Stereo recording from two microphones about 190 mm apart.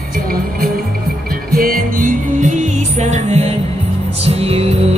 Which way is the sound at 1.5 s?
50° right (ahead or behind).